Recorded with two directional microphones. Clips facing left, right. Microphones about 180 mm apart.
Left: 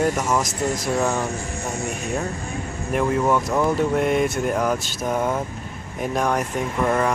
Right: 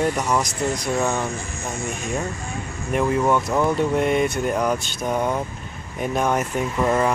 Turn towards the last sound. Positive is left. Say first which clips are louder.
# right 1 dB
turn(degrees=-5)  # may be behind; listen again after turning